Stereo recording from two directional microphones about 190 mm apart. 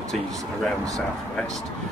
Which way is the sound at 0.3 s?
20° right (ahead or behind).